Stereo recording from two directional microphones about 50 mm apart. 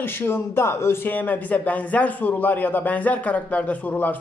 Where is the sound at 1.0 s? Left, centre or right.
Left.